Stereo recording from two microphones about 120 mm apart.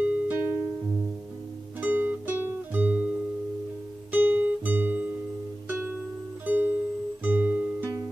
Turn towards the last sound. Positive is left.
turn(degrees=-15)  # may be behind; listen again after turning